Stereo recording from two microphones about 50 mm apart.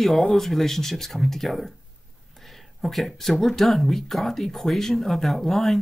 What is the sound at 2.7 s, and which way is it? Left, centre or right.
Speech, centre.